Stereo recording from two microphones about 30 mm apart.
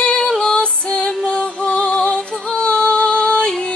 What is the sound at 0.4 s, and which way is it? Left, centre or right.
Music, left.